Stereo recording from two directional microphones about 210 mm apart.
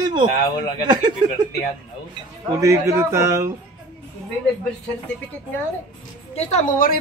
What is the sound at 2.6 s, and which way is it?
Speech, 15° right (ahead or behind).